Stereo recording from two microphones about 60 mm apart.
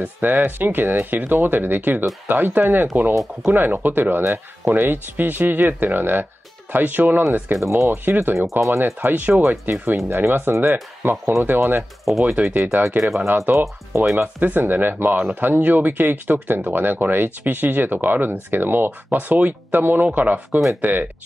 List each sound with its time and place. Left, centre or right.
0.0 s speech: right
7.6 s speech: right
7.9 s speech: right
8.5 s speech: right
9.0 s speech: right
11.0 s speech: right
12.0 s speech: centre
12.6 s speech: right
13.0 s speech: centre
13.3 s speech: right
14.2 s speech: right